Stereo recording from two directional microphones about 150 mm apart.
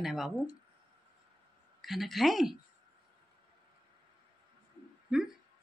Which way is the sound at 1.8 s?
Centre (ahead or behind).